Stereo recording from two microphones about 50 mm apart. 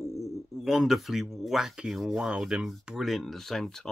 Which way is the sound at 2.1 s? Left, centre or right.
Centre.